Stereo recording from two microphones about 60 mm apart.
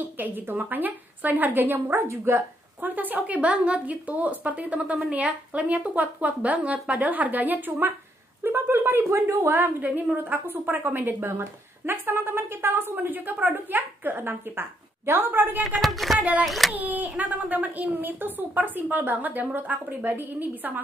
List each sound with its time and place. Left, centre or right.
0.0 s speech: right
2.8 s a woman's voice: right
15.6 s speech: centre
16.2 s a woman's voice: right
16.4 s speech: centre
16.7 s a woman's voice: right